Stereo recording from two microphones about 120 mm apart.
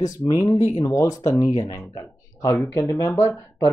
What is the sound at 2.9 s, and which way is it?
Speech, 25° left (ahead or behind).